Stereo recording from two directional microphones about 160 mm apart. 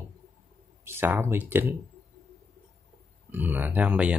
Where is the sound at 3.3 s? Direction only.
10° right (ahead or behind).